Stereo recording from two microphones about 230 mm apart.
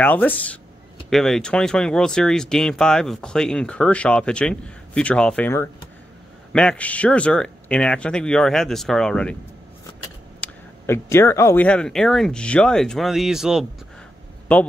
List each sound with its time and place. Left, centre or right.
0.0 s speech: centre
10.4 s speech: centre